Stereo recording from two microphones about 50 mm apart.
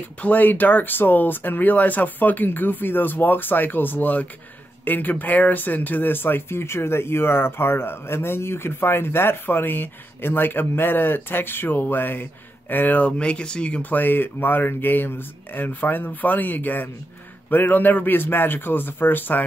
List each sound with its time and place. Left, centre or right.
0.2 s speech: left
13.2 s speech: centre
13.8 s speech: left